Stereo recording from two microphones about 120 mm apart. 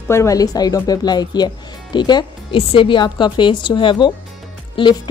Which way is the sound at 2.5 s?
50° left (ahead or behind).